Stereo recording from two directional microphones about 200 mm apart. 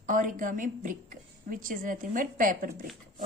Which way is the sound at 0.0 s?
40° right (ahead or behind).